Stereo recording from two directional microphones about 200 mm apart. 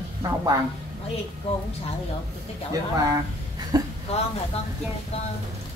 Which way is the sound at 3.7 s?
20° right (ahead or behind).